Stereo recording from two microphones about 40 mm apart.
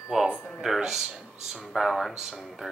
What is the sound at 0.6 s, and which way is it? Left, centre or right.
Speech, centre.